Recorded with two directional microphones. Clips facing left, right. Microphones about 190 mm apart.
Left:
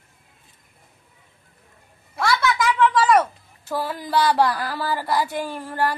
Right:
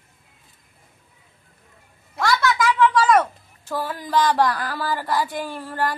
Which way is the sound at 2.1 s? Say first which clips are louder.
Right 1 dB; centre (ahead or behind).